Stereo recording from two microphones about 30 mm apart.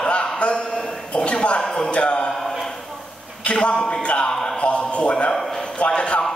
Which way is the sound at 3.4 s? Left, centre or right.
Left.